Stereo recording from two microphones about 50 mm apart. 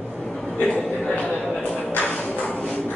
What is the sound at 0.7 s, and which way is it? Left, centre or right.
Speech, left.